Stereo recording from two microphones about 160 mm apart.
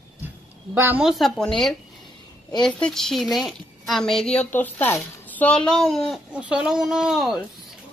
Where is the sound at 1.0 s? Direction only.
Centre (ahead or behind).